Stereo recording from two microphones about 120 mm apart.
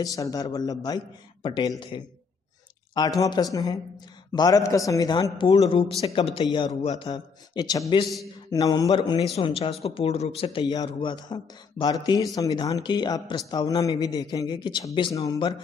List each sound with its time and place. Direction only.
0.0 s a man's voice: 30° left (ahead or behind)
3.3 s a man's voice: 35° left (ahead or behind)
5.6 s speech: 50° left (ahead or behind)
7.1 s a man's voice: 35° left (ahead or behind)
9.2 s speech: 55° left (ahead or behind)
10.6 s a man's voice: 30° left (ahead or behind)
10.9 s a man's voice: 40° left (ahead or behind)